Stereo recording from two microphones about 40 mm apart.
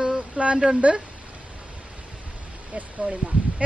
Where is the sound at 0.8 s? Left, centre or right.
Right.